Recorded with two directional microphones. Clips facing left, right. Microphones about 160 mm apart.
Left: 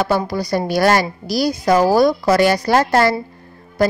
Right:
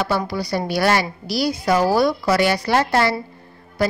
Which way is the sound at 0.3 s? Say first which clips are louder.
Left 4 dB; 45° left (ahead or behind).